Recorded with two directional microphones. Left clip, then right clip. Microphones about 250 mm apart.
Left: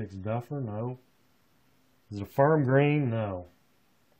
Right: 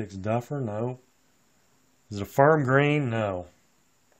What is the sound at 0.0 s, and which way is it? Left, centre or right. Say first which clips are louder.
Speech: right 5 dB; right.